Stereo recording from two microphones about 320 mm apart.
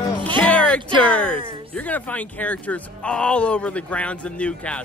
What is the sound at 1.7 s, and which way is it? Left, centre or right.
Speech, centre.